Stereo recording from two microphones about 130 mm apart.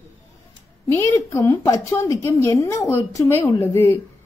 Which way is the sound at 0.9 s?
20° left (ahead or behind).